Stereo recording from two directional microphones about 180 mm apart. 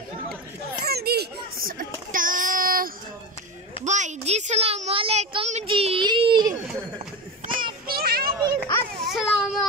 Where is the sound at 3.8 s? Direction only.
40° right (ahead or behind); by 6.5 s 25° right (ahead or behind).